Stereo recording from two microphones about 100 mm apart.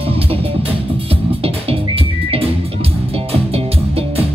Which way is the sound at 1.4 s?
70° right (ahead or behind).